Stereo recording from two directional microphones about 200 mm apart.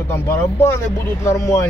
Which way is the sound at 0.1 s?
10° left (ahead or behind).